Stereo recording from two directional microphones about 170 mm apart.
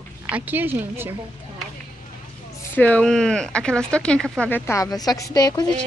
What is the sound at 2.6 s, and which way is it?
Speech, 10° left (ahead or behind).